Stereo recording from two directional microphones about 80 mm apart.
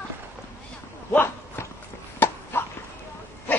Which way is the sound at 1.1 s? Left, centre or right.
Left.